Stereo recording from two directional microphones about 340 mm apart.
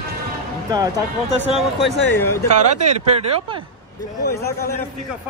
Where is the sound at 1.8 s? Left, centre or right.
Centre.